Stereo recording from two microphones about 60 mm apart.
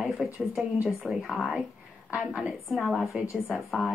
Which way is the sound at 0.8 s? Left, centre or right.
Centre.